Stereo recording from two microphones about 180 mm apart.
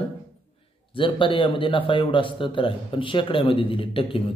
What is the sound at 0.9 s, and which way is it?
A man's voice, 30° left (ahead or behind).